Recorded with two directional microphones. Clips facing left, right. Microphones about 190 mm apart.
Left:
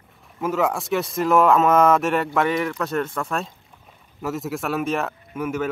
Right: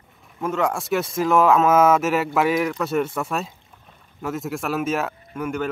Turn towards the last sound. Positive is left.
turn(degrees=0)  # may be behind; listen again after turning